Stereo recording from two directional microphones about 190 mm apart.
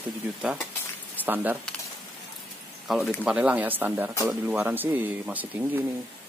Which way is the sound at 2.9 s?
Centre (ahead or behind).